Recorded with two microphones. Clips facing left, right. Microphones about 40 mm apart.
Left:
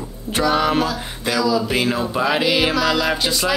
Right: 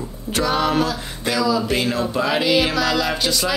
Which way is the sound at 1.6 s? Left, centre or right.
Centre.